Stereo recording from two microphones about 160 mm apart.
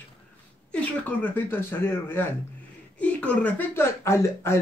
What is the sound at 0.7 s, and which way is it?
Speech, 10° left (ahead or behind).